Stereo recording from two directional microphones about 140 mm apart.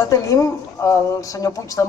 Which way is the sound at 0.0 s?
25° left (ahead or behind).